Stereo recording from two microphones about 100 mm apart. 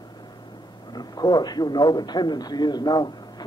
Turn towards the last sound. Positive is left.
turn(degrees=45)  # may be behind; listen again after turning